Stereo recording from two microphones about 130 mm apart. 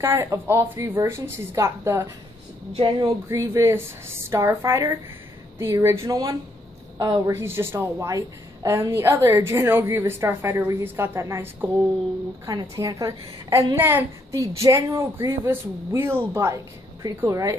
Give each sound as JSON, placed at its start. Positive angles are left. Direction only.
{"t": 0.0, "sound": "a woman's voice", "side_deg": -20}
{"t": 2.7, "sound": "speech", "side_deg": -40}
{"t": 3.1, "sound": "a woman's voice", "side_deg": -25}
{"t": 7.3, "sound": "a woman's voice", "side_deg": -20}